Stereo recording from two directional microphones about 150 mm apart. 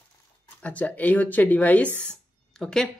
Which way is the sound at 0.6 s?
10° left (ahead or behind).